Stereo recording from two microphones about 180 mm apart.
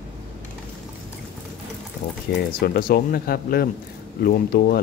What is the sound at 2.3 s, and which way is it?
Speech, 55° left (ahead or behind).